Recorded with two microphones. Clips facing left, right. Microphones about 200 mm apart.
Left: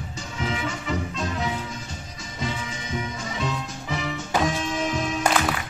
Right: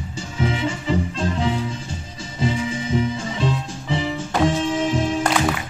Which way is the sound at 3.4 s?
30° right (ahead or behind).